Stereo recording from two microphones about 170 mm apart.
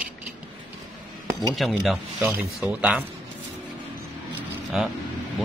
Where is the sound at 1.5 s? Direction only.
Centre (ahead or behind).